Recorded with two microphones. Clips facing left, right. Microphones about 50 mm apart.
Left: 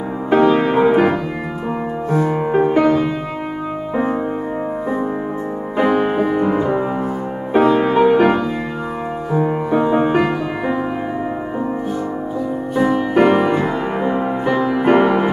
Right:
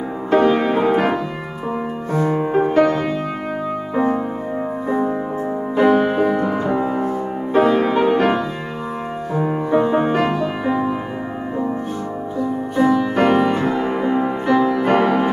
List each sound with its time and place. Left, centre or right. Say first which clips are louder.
0.6 s music: left 3 dB; centre
5.8 s music: right 1 dB; centre
13.2 s music: left 4 dB; centre